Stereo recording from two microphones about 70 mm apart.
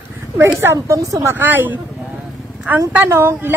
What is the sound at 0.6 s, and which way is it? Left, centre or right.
Speech, right.